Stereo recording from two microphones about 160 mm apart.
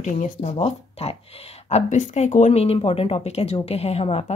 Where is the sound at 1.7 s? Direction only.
50° left (ahead or behind).